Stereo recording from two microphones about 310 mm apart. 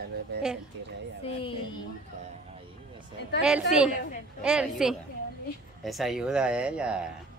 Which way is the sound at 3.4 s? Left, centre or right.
Centre.